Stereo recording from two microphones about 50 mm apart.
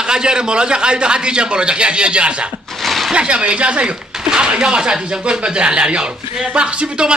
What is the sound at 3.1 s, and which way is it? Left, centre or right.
Speech, right.